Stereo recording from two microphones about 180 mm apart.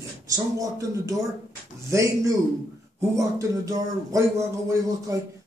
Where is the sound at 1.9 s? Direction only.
20° right (ahead or behind).